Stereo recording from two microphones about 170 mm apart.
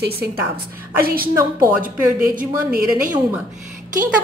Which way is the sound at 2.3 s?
55° right (ahead or behind).